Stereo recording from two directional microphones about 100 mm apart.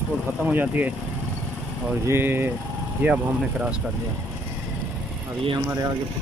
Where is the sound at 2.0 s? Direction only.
25° right (ahead or behind).